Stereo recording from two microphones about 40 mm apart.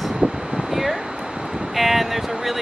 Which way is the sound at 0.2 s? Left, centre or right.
Right.